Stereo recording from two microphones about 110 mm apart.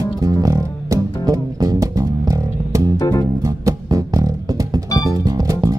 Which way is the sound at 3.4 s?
30° right (ahead or behind).